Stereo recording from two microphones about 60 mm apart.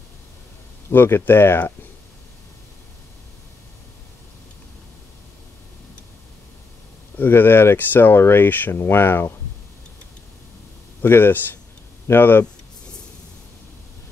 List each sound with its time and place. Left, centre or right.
0.9 s speech: left
7.2 s speech: left
11.0 s speech: left